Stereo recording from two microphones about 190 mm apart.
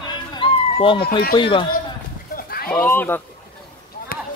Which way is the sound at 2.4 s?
55° left (ahead or behind).